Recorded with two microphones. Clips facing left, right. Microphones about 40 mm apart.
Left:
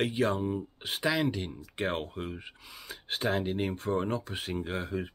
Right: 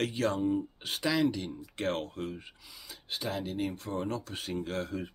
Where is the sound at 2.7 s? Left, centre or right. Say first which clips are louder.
Left 3 dB; left.